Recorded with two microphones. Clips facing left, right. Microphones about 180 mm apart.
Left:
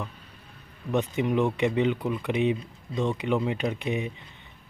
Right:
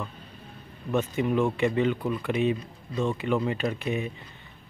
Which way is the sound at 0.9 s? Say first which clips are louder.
Even; 15° left (ahead or behind).